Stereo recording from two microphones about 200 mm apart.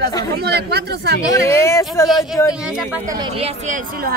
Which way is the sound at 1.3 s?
15° left (ahead or behind).